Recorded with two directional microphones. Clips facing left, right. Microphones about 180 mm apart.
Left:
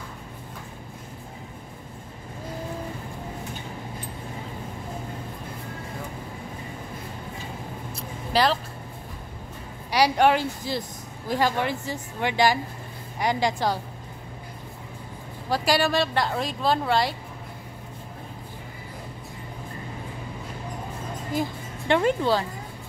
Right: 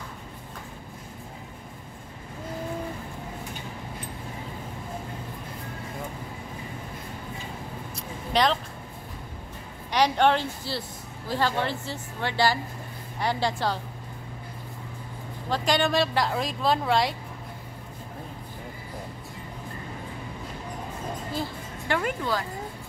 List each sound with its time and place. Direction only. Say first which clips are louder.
8.3 s speech: left 1 dB; 5° left (ahead or behind)
9.8 s speech: left 2 dB; 10° left (ahead or behind)
15.5 s a woman's voice: left 1 dB; 5° left (ahead or behind)
21.3 s music: left 4 dB; 20° left (ahead or behind)